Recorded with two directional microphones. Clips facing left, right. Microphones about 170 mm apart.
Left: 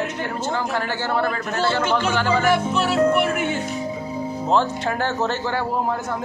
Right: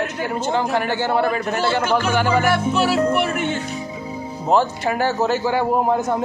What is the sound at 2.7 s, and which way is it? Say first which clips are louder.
Music: even; centre (ahead or behind).